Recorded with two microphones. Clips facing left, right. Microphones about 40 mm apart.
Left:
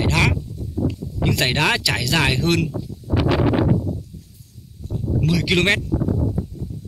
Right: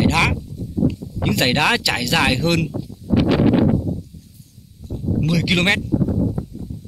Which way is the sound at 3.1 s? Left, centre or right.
Centre.